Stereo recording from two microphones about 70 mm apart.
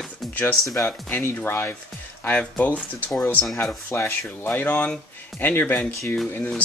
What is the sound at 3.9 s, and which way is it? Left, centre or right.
Speech, left.